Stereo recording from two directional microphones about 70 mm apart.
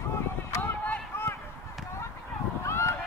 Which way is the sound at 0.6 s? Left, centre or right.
Left.